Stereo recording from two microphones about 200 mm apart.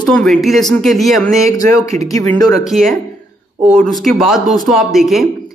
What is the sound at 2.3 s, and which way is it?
Speech, centre (ahead or behind).